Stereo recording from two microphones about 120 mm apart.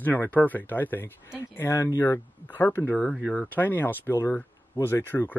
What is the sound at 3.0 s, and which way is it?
Speech, centre (ahead or behind).